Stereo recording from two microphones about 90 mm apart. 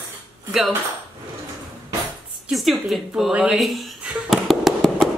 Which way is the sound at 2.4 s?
5° right (ahead or behind).